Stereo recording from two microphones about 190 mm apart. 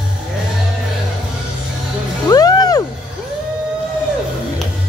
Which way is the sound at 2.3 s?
20° left (ahead or behind).